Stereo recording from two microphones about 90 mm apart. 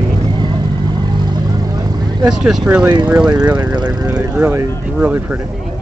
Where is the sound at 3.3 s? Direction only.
50° right (ahead or behind).